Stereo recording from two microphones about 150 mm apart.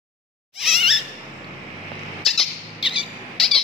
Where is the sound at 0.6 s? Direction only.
5° right (ahead or behind).